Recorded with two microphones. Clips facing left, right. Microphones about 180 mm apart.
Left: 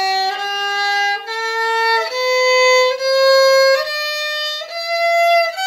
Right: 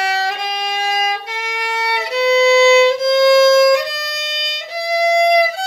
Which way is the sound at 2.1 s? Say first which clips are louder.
Right 4 dB; 15° right (ahead or behind).